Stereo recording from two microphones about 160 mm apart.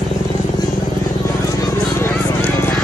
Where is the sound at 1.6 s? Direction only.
15° left (ahead or behind).